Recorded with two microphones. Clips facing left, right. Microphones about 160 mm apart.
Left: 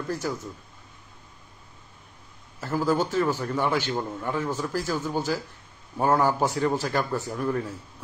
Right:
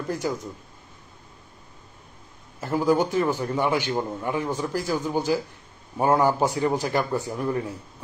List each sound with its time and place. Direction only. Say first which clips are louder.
0.2 s a man's voice: right 4 dB; 15° right (ahead or behind)
2.6 s a man's voice: right 3 dB; 15° right (ahead or behind)